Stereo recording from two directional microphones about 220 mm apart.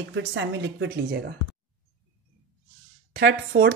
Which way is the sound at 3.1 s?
50° right (ahead or behind).